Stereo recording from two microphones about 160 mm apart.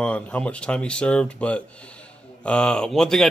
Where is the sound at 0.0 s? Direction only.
5° left (ahead or behind).